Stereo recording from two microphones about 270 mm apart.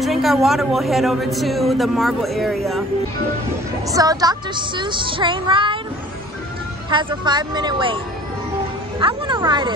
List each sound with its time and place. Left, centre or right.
0.0 s speech: centre
3.8 s a woman's voice: centre
6.9 s a woman's voice: centre
9.0 s a woman's voice: centre